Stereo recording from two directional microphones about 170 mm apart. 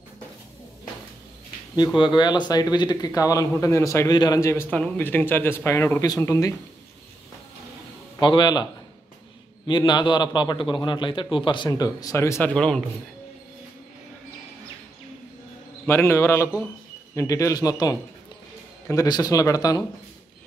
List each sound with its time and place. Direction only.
2.0 s speech: 25° left (ahead or behind)
8.2 s speech: 25° left (ahead or behind)
9.7 s speech: 25° left (ahead or behind)
12.5 s a man's voice: 5° left (ahead or behind)
15.9 s a man's voice: 15° left (ahead or behind)